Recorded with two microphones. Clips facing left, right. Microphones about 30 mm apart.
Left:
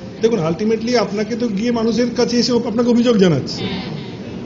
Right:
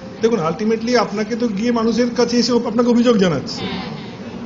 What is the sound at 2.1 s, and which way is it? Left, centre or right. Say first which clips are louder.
Speech: even; left.